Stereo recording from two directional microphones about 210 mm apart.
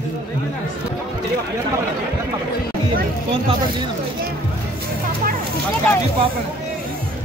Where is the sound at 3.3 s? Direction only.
25° right (ahead or behind).